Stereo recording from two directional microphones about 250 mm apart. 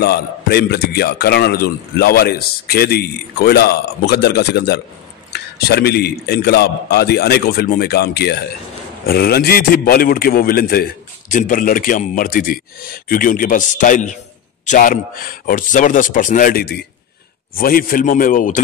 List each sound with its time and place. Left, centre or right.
0.0 s a man's voice: left